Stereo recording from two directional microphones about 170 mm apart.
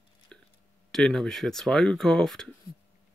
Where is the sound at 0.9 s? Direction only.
Centre (ahead or behind).